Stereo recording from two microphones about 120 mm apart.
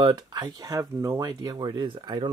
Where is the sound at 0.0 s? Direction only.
35° right (ahead or behind).